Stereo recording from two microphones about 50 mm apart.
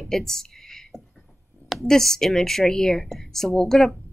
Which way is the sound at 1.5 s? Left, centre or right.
Right.